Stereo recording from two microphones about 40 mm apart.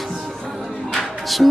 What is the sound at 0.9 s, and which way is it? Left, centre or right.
Music, centre.